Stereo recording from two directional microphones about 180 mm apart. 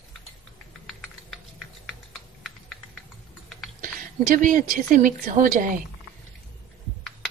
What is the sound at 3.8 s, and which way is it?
A woman's voice, 45° right (ahead or behind).